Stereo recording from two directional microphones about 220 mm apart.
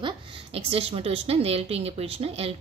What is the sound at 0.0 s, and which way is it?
A woman's voice, 25° right (ahead or behind).